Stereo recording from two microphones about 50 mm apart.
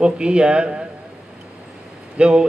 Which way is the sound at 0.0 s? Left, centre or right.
Centre.